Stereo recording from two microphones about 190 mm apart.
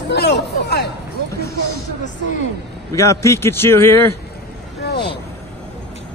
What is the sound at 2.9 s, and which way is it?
A man's voice, 15° left (ahead or behind).